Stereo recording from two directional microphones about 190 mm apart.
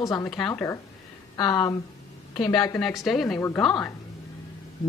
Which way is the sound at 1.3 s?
20° left (ahead or behind).